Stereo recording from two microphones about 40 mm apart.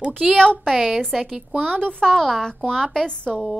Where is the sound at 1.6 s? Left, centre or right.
Left.